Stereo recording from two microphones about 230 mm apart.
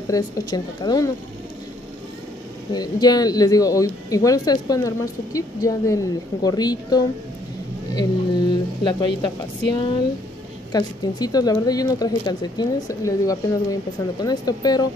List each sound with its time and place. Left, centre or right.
0.1 s speech: centre
2.7 s a woman's voice: centre